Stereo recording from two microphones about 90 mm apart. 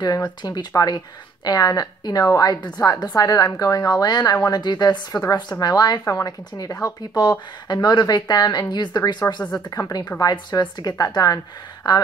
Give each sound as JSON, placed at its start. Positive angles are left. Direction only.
{"t": 0.4, "sound": "a woman's voice", "side_deg": 50}
{"t": 9.7, "sound": "speech", "side_deg": 40}
{"t": 10.2, "sound": "a woman's voice", "side_deg": 55}